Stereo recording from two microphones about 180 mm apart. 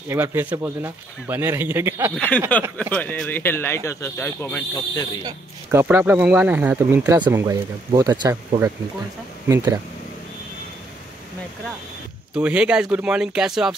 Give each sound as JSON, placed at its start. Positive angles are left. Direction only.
{"t": 0.1, "sound": "speech", "side_deg": -10}
{"t": 2.1, "sound": "speech", "side_deg": 10}
{"t": 5.2, "sound": "speech", "side_deg": -10}
{"t": 12.4, "sound": "speech", "side_deg": -5}